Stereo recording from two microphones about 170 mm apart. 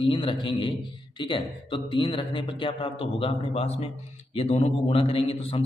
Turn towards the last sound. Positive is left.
turn(degrees=35)  # may be behind; listen again after turning